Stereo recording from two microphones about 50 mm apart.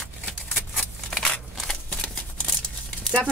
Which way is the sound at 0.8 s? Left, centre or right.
Centre.